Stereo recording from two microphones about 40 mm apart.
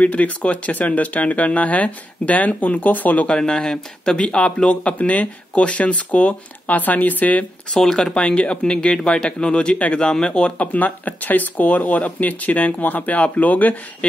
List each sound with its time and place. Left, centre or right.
0.0 s speech: left
3.3 s speech: left
4.9 s speech: left
6.8 s speech: left
7.7 s speech: centre
8.1 s speech: left
10.6 s speech: left